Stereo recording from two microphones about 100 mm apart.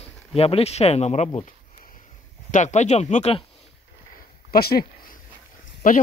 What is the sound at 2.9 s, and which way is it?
Speech, 90° left.